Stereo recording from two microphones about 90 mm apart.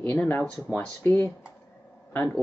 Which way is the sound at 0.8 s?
20° left (ahead or behind).